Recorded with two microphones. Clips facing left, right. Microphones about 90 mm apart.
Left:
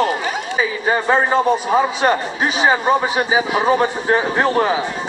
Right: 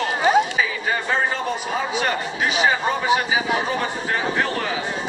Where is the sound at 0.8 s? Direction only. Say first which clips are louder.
Left 9 dB; 35° left (ahead or behind).